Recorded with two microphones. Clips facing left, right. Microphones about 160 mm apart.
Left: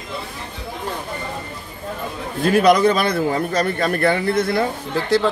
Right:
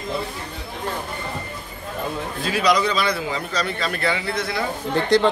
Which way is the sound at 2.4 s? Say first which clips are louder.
Left 7 dB; 55° left (ahead or behind).